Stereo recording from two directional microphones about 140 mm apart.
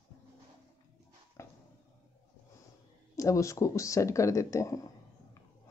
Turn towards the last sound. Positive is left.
turn(degrees=25)  # may be behind; listen again after turning